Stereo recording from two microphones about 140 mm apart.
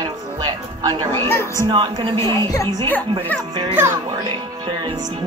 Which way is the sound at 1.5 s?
30° right (ahead or behind).